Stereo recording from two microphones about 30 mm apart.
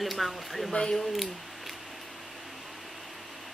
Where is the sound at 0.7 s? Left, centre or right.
Left.